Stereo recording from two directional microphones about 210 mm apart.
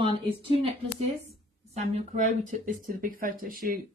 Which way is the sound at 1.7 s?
35° right (ahead or behind).